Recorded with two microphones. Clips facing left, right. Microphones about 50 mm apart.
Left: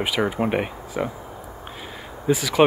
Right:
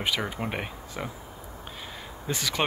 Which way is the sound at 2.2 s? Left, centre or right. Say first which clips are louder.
Left 10 dB; centre.